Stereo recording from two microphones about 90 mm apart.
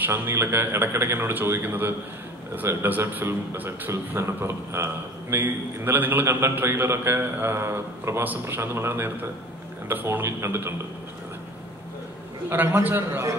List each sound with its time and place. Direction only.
0.0 s a man's voice: 25° right (ahead or behind)
12.4 s a man's voice: 30° right (ahead or behind)